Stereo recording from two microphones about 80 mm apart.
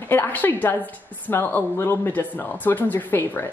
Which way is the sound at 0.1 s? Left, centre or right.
Left.